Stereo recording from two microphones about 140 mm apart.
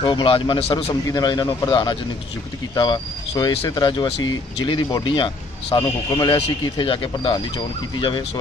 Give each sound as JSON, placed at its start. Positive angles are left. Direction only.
{"t": 0.0, "sound": "speech", "side_deg": 35}
{"t": 6.8, "sound": "speech", "side_deg": 40}